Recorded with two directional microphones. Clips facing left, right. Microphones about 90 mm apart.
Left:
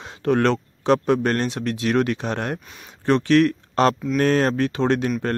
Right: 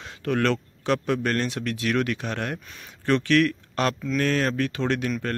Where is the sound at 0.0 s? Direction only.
30° left (ahead or behind).